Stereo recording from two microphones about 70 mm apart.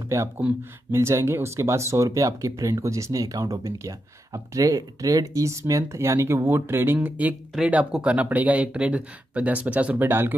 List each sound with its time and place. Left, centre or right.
0.1 s speech: right